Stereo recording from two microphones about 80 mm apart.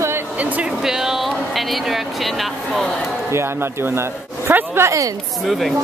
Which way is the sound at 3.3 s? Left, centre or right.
Right.